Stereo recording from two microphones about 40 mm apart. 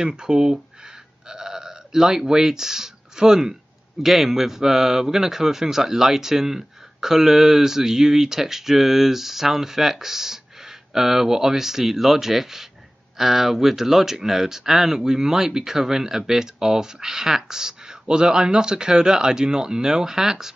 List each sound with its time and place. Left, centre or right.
0.0 s speech: right
1.3 s burping: centre
2.0 s a man's voice: centre